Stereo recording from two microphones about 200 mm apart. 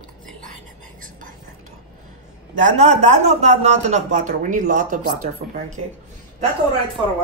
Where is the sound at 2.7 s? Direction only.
35° right (ahead or behind).